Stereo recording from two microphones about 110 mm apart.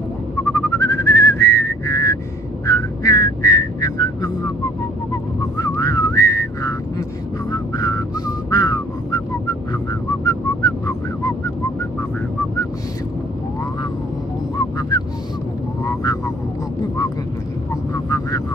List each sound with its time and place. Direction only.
0.5 s whistling: 25° left (ahead or behind)
5.6 s whistling: 30° left (ahead or behind)
7.5 s vehicle: 35° left (ahead or behind)
8.5 s a sound: 35° left (ahead or behind)
10.2 s whistling: 30° left (ahead or behind)
14.8 s honk: 35° left (ahead or behind)
15.8 s vehicle: 30° left (ahead or behind)
17.9 s vehicle: 30° left (ahead or behind)